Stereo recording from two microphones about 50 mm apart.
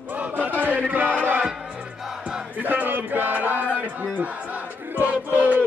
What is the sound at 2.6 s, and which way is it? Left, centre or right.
Music, right.